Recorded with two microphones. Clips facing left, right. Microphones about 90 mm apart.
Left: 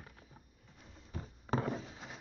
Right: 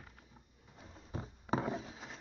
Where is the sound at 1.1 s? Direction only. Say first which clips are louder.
Right 3 dB; 25° right (ahead or behind).